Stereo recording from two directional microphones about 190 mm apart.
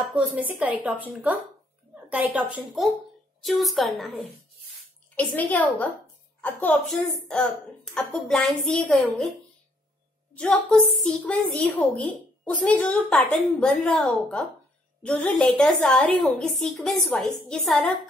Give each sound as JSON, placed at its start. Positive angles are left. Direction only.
{"t": 0.1, "sound": "a woman's voice", "side_deg": -5}
{"t": 3.4, "sound": "a woman's voice", "side_deg": 0}
{"t": 10.3, "sound": "a woman's voice", "side_deg": 5}